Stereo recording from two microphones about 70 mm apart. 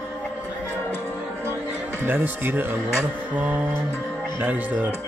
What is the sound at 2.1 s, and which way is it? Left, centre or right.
Speech, right.